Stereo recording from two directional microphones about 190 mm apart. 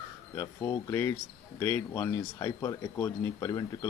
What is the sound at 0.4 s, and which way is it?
Speech, 15° left (ahead or behind).